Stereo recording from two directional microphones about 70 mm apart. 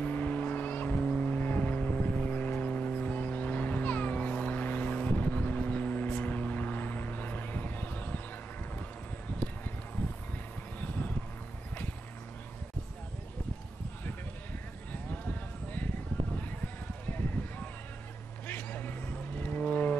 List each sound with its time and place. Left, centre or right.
0.0 s vehicle: left
14.9 s livestock: left
16.3 s a sound: left
18.5 s vehicle: left